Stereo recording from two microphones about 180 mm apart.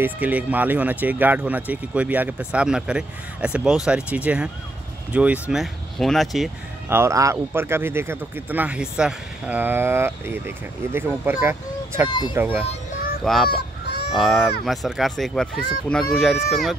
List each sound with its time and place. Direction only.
0.0 s speech: 10° right (ahead or behind)
6.9 s speech: 15° right (ahead or behind)
12.1 s speech: 25° left (ahead or behind)
13.2 s speech: centre (ahead or behind)
13.5 s honk: 60° left (ahead or behind)
14.1 s speech: centre (ahead or behind)